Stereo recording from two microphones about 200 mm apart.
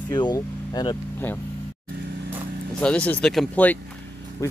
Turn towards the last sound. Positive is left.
turn(degrees=5)  # may be behind; listen again after turning